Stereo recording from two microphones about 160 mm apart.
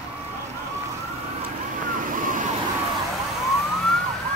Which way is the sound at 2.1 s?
55° right (ahead or behind).